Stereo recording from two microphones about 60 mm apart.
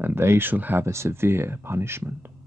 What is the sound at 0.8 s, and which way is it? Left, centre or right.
Speech, right.